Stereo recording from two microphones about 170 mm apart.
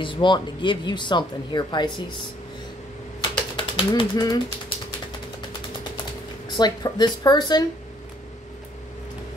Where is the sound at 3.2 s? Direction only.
30° left (ahead or behind).